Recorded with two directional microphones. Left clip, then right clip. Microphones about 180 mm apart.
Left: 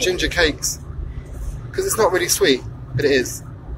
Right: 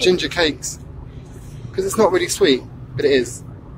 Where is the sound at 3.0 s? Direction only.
25° right (ahead or behind).